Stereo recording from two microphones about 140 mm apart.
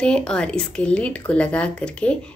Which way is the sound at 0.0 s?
5° left (ahead or behind).